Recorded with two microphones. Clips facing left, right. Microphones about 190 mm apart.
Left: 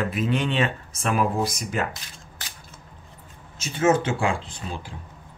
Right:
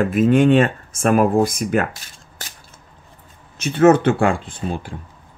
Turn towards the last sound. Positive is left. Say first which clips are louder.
# right 8 dB
turn(degrees=-55)  # may be behind; listen again after turning